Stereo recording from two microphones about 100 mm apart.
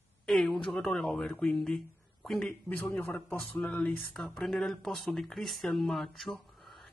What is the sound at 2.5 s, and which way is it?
Speech, 15° left (ahead or behind).